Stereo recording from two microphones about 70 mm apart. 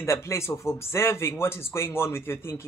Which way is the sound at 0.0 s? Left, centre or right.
Left.